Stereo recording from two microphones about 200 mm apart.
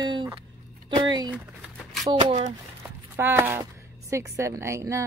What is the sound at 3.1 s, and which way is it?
A woman's voice, 10° right (ahead or behind).